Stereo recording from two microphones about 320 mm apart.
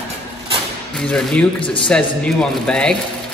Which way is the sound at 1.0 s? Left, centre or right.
Centre.